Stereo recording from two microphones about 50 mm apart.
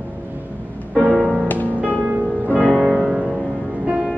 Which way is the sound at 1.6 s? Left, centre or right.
Right.